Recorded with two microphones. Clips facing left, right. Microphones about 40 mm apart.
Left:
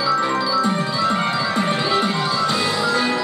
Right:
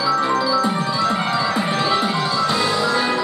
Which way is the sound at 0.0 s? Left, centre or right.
Centre.